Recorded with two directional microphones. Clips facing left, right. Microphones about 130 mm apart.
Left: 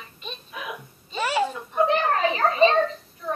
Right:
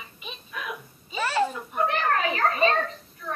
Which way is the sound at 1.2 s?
15° left (ahead or behind).